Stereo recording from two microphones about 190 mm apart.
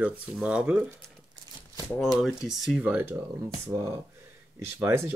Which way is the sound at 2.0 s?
Centre (ahead or behind).